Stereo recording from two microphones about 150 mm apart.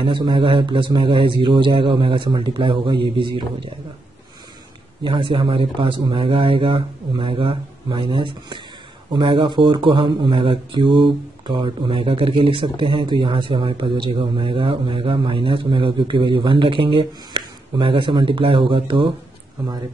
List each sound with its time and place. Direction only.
0.0 s speech: 30° right (ahead or behind)
5.0 s speech: 35° right (ahead or behind)